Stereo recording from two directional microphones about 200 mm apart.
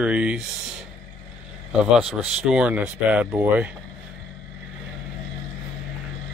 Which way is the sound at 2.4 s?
5° right (ahead or behind).